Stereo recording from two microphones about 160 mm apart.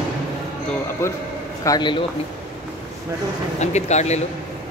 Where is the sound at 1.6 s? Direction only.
25° left (ahead or behind).